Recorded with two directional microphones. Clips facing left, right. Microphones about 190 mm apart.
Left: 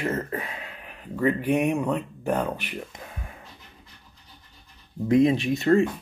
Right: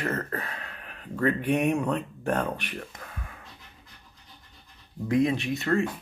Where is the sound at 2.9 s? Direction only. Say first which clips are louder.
Left 2 dB; 20° left (ahead or behind).